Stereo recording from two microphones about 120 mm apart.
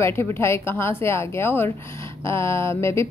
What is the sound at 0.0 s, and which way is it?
A woman's voice, 20° left (ahead or behind).